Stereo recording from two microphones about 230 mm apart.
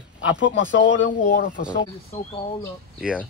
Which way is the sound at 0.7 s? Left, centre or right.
Left.